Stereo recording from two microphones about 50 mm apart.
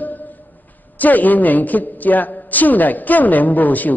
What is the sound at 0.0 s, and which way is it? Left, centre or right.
Music, left.